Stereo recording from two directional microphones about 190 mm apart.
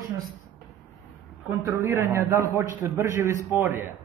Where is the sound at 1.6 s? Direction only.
15° right (ahead or behind).